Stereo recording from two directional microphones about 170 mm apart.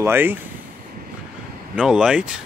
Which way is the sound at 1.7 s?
5° right (ahead or behind).